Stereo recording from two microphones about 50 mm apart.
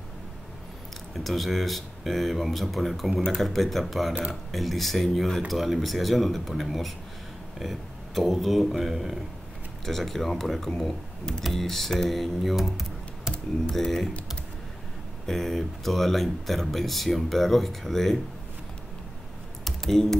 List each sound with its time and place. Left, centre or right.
1.1 s speech: centre
4.1 s speech: right
4.5 s speech: centre
9.8 s speech: centre
15.2 s speech: centre
19.6 s computer keyboard: centre